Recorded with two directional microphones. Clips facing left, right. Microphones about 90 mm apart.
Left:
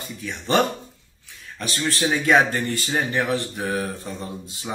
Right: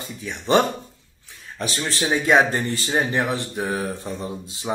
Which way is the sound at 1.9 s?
20° right (ahead or behind).